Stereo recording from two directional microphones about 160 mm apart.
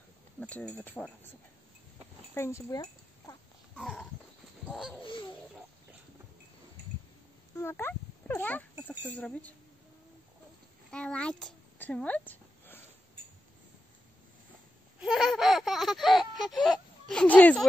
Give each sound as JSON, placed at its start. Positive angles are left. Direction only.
{"t": 0.4, "sound": "a sound", "side_deg": 10}
{"t": 0.7, "sound": "speech", "side_deg": 10}
{"t": 2.3, "sound": "speech", "side_deg": 15}
{"t": 3.7, "sound": "horse", "side_deg": 5}
{"t": 4.6, "sound": "dog", "side_deg": 0}
{"t": 7.5, "sound": "oink", "side_deg": 15}
{"t": 8.8, "sound": "speech", "side_deg": 10}
{"t": 10.9, "sound": "a child's voice", "side_deg": 5}
{"t": 15.0, "sound": "baby laughter", "side_deg": 0}
{"t": 17.1, "sound": "speech", "side_deg": 5}